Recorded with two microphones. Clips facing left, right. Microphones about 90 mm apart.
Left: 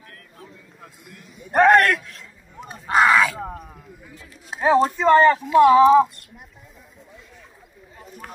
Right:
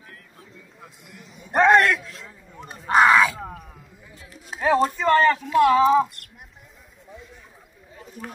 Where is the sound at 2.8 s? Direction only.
30° right (ahead or behind).